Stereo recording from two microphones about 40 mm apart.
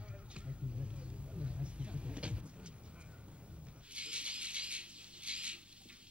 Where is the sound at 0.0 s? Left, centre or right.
Right.